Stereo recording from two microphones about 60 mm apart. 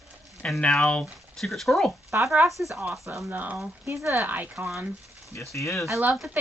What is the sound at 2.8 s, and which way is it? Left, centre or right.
Speech, right.